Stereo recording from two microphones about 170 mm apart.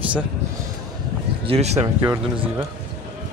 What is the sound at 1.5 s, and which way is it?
Speech, 40° right (ahead or behind).